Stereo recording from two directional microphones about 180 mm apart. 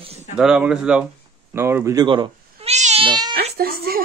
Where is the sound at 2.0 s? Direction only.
25° right (ahead or behind).